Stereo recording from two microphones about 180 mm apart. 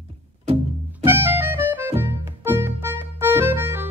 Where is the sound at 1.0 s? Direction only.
10° right (ahead or behind).